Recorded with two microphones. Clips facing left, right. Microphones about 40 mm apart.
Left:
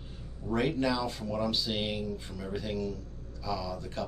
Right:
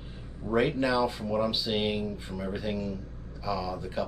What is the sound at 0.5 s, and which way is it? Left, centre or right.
A woman's voice, centre.